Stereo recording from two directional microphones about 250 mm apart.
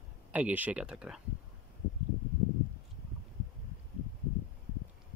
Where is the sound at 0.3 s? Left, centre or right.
Centre.